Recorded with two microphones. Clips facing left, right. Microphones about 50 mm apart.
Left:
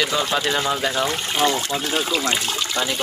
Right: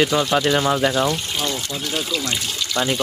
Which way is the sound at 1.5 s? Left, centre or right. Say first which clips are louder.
Left 4 dB; left.